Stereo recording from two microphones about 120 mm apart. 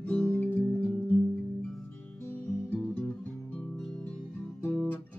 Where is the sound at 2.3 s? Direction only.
10° left (ahead or behind).